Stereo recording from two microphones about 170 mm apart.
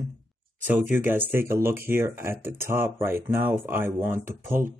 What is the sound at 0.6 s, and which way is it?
Speech, 10° right (ahead or behind).